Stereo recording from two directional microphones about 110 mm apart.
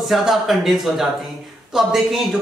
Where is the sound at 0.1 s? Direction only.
Centre (ahead or behind).